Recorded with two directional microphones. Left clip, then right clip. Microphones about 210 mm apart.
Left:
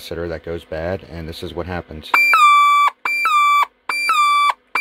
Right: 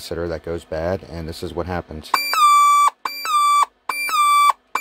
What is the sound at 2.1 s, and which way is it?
Beep, 10° left (ahead or behind).